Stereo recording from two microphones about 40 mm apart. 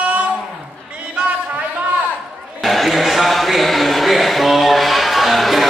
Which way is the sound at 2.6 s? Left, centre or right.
Centre.